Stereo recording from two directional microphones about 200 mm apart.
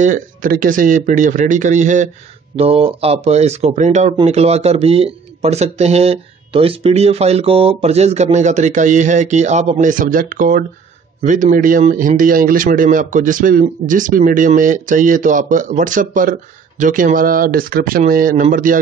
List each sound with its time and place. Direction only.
0.0 s speech: 40° right (ahead or behind)